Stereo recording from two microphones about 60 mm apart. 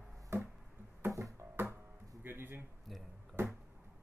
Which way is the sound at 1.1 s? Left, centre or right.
Right.